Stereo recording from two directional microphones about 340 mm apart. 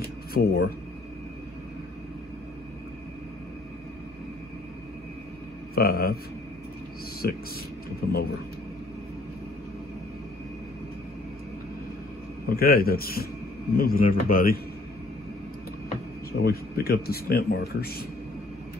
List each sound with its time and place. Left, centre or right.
0.3 s speech: left
5.8 s speech: left
7.2 s speech: left
12.4 s speech: left
16.3 s speech: left